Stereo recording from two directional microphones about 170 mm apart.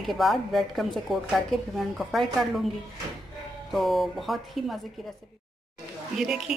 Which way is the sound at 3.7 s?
Centre (ahead or behind).